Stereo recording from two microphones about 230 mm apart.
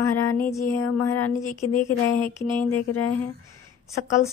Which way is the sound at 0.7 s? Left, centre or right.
Left.